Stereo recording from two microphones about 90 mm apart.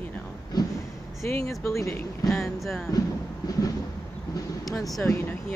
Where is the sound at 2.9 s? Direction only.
40° left (ahead or behind).